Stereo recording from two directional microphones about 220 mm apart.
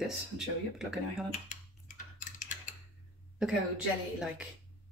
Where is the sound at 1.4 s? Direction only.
35° left (ahead or behind).